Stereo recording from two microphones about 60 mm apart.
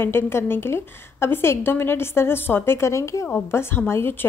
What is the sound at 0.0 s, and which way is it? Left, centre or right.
A woman's voice, left.